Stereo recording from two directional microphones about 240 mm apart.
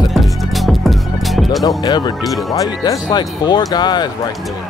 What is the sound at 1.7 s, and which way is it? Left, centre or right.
Speech, centre.